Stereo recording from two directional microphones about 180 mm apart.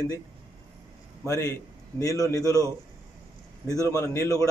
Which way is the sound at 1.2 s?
15° left (ahead or behind).